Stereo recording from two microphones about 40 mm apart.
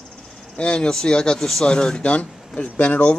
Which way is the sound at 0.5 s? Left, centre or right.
Left.